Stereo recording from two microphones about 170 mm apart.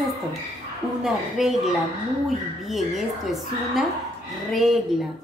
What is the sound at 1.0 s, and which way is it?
Speech, centre (ahead or behind).